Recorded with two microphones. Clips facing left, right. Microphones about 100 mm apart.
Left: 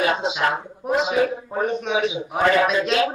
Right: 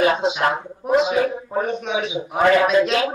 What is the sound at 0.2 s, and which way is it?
A child's voice, centre (ahead or behind).